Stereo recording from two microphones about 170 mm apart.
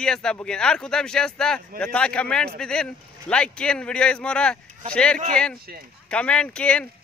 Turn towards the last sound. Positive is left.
turn(degrees=5)  # may be behind; listen again after turning